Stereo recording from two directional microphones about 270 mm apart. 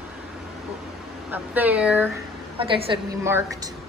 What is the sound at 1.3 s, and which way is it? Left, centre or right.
Speech, centre.